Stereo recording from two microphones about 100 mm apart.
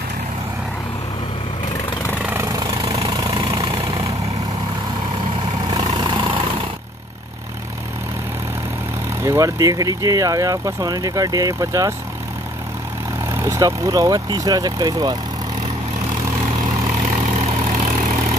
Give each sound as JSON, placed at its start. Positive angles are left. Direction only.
{"t": 2.4, "sound": "vehicle", "side_deg": -35}
{"t": 5.7, "sound": "vehicle", "side_deg": -40}
{"t": 9.2, "sound": "speech", "side_deg": -30}
{"t": 13.3, "sound": "speech", "side_deg": -30}